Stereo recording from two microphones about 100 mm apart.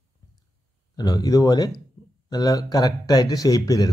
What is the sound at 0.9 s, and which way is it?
Speech, 40° left (ahead or behind).